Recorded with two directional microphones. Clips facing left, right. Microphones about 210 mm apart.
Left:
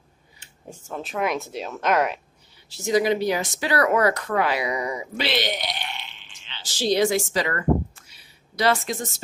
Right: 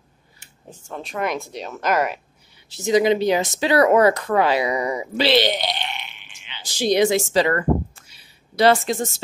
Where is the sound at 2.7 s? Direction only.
20° right (ahead or behind).